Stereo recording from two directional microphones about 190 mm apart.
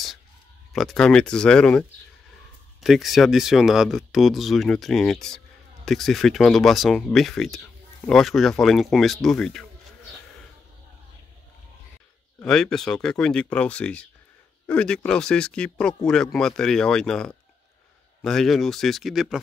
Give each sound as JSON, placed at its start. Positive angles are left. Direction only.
{"t": 0.7, "sound": "speech", "side_deg": 0}
{"t": 12.4, "sound": "speech", "side_deg": 5}